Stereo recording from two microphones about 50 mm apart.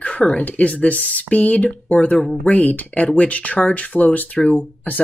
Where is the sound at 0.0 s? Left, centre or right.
Left.